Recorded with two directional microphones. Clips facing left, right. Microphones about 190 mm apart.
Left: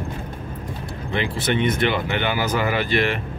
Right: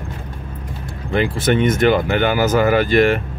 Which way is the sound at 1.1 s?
45° right (ahead or behind).